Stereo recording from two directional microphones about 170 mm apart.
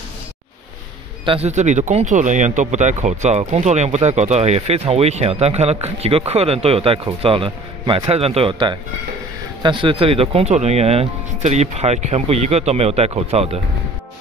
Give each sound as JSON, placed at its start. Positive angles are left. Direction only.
{"t": 1.2, "sound": "speech", "side_deg": -35}